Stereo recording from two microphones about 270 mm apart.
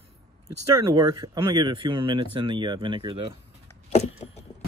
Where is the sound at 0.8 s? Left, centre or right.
Centre.